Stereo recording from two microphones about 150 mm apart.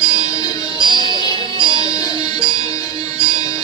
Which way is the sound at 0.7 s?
30° right (ahead or behind).